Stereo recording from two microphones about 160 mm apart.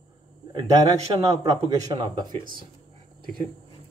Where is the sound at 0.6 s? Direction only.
25° right (ahead or behind).